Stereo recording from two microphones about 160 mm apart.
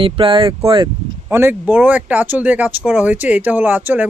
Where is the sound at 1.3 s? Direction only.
15° right (ahead or behind).